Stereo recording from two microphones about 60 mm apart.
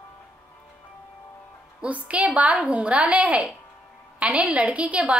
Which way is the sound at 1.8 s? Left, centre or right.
Right.